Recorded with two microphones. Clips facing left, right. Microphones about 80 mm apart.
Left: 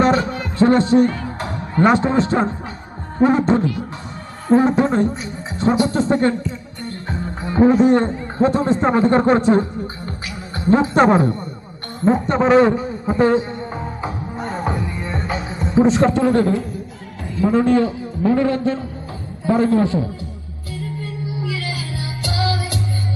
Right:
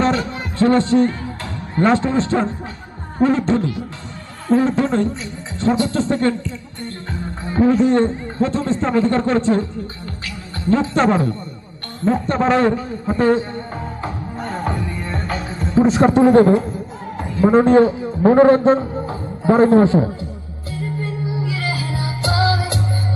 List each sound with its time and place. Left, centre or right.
0.0 s a sound: left
0.6 s a man's voice: left
12.0 s music: centre
16.0 s a man's voice: right
20.8 s music: right